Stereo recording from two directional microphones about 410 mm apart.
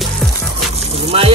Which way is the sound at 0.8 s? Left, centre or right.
Centre.